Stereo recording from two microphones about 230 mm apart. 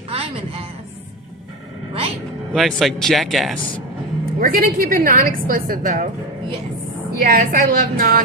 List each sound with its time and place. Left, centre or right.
0.1 s a sound: right
2.5 s a man's voice: centre
4.4 s a woman's voice: right
7.2 s a woman's voice: right